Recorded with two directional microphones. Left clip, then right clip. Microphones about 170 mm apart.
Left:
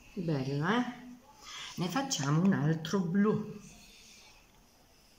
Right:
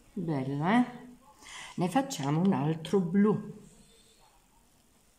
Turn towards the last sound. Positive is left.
turn(degrees=-30)  # may be behind; listen again after turning